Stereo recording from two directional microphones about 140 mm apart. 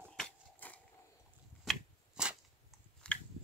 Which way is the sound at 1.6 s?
5° right (ahead or behind).